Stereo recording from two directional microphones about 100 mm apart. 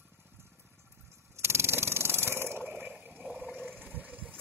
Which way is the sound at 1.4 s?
25° right (ahead or behind).